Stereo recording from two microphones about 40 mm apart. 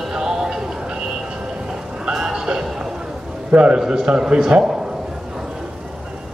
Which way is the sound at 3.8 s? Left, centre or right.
Centre.